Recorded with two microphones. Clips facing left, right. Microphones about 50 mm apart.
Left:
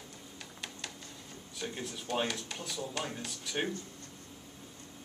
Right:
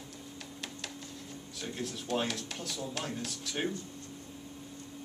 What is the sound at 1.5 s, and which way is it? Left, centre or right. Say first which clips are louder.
Speech: right 1 dB; centre.